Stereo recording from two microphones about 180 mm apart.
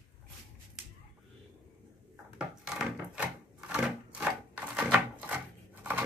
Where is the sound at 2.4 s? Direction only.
5° right (ahead or behind).